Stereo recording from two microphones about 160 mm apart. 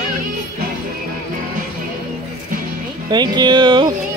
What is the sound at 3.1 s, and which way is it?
Speech, 25° right (ahead or behind).